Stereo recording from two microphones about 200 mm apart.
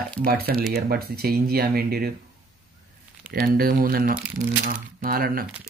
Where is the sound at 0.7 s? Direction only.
50° right (ahead or behind).